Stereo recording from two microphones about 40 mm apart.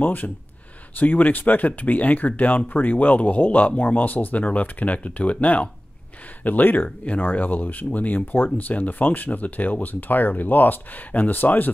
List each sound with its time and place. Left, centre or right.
0.0 s speech: left